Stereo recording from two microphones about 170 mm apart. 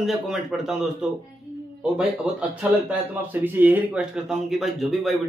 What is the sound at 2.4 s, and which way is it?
A man's voice, 10° right (ahead or behind).